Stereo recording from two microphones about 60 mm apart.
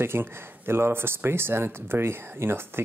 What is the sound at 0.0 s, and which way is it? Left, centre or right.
Speech, right.